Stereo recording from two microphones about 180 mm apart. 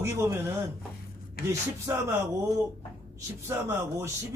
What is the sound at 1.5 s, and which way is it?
Speech, 15° right (ahead or behind).